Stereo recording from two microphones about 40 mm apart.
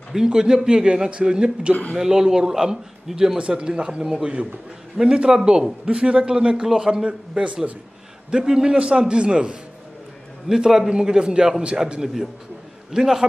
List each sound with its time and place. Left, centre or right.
0.1 s a man's voice: centre
2.0 s a man's voice: centre
3.3 s a man's voice: right
10.5 s a man's voice: centre
12.0 s a man's voice: centre